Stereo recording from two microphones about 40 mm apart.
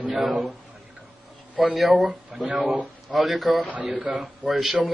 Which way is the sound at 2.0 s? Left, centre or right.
Right.